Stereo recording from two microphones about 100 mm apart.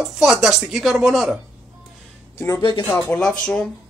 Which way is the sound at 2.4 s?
35° left (ahead or behind).